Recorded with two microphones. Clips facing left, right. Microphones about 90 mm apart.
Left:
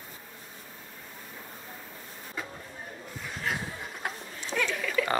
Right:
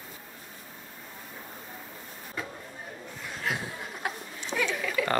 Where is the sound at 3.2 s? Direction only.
Centre (ahead or behind).